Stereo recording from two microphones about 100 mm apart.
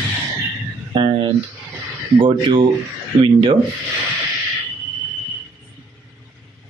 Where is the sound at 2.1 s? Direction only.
55° right (ahead or behind).